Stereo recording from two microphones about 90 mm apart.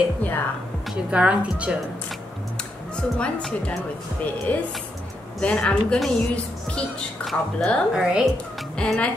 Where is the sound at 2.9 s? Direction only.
10° left (ahead or behind).